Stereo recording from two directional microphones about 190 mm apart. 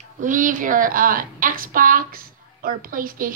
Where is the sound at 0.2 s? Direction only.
45° right (ahead or behind).